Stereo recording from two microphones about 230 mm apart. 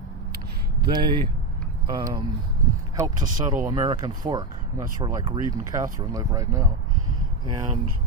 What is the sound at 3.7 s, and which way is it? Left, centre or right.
Speech, centre.